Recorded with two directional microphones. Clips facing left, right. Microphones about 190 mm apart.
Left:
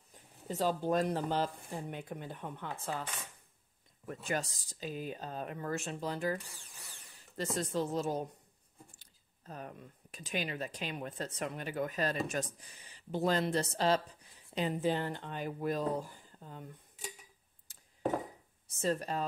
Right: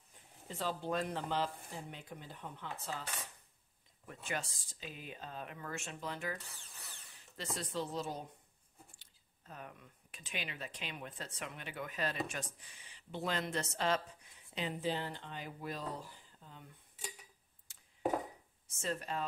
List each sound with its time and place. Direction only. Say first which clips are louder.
0.5 s speech: left 6 dB; 40° left (ahead or behind)
4.1 s speech: left 6 dB; 40° left (ahead or behind)
7.3 s speech: left 6 dB; 45° left (ahead or behind)
14.5 s speech: left 5 dB; 45° left (ahead or behind)
17.7 s a sound: left 4 dB; 40° left (ahead or behind)
18.7 s speech: left 6 dB; 35° left (ahead or behind)